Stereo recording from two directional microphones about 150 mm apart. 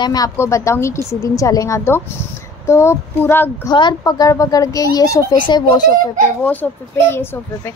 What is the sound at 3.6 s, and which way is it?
Speech, 25° left (ahead or behind).